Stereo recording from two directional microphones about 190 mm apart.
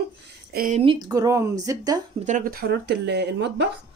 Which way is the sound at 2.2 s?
45° right (ahead or behind).